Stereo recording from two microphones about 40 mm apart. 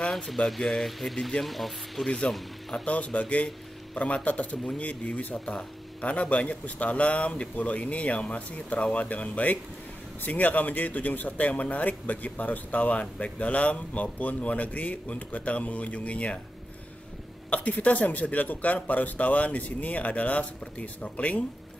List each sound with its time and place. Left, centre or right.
0.6 s speech: centre
0.8 s speech: centre
2.0 s speech: left
17.5 s speech: left